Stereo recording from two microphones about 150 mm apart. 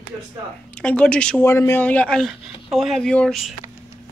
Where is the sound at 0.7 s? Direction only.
10° left (ahead or behind).